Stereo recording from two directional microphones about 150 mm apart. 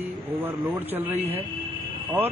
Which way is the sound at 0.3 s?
10° right (ahead or behind).